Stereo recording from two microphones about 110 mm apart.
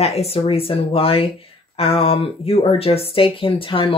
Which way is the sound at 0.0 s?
70° left (ahead or behind).